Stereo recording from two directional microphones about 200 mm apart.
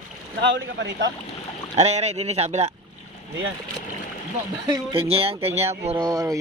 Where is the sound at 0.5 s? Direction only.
60° right (ahead or behind).